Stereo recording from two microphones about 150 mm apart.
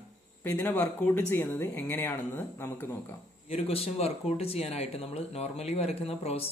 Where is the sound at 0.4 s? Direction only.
10° left (ahead or behind).